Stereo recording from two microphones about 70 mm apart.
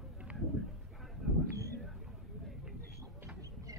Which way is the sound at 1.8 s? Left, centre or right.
Centre.